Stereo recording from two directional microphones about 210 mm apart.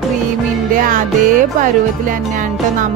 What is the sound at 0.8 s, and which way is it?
A woman's voice, 40° right (ahead or behind).